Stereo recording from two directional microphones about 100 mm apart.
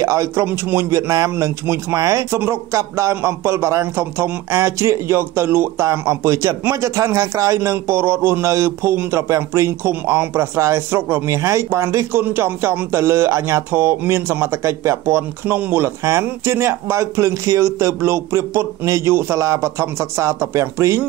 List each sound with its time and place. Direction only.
0.0 s speech: 30° right (ahead or behind)